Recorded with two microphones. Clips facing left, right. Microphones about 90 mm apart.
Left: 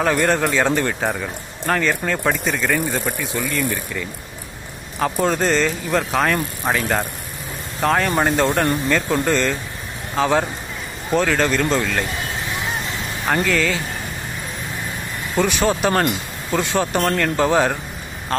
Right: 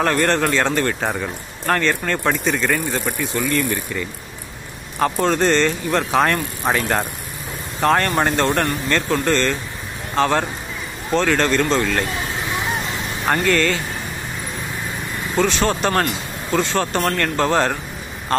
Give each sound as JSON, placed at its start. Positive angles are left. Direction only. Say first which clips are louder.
{"t": 0.0, "sound": "speech", "louder": "even", "side_deg": 5}
{"t": 1.0, "sound": "speech", "louder": "even", "side_deg": 0}
{"t": 13.2, "sound": "speech", "louder": "right 1 dB", "side_deg": 0}
{"t": 15.3, "sound": "speech", "louder": "even", "side_deg": 15}